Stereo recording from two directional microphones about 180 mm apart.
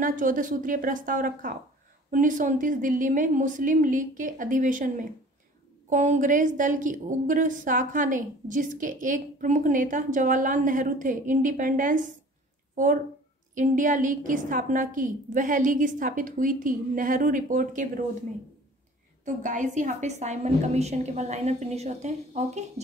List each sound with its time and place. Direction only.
0.0 s a woman's voice: 50° right (ahead or behind)
19.2 s a woman's voice: 45° right (ahead or behind)